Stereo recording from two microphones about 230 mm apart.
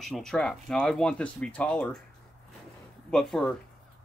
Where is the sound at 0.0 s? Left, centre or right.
Centre.